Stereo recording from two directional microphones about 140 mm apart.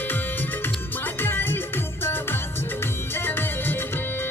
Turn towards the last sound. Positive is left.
turn(degrees=15)  # may be behind; listen again after turning